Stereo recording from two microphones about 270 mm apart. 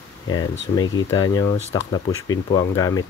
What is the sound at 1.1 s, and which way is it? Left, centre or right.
Speech, centre.